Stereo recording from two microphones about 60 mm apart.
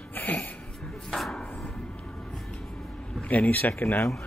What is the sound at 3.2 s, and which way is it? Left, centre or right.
Speech, left.